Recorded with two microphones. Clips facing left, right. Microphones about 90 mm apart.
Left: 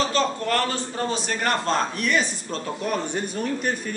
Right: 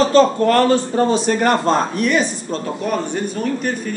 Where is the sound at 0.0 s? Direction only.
40° right (ahead or behind).